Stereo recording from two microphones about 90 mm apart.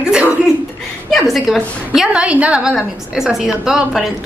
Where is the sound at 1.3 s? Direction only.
Centre (ahead or behind).